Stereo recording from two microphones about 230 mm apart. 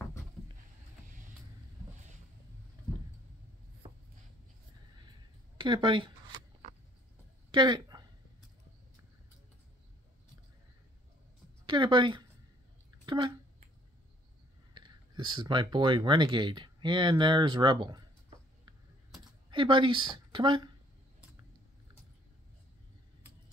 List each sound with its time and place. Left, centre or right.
3.8 s writing: right
5.6 s speech: centre
7.5 s a sound: centre
11.6 s speech: centre
13.0 s a sound: centre
14.7 s speech: centre
19.5 s speech: right